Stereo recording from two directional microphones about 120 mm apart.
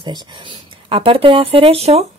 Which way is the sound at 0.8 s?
50° right (ahead or behind).